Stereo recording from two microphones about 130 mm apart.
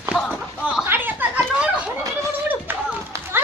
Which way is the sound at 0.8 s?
15° right (ahead or behind).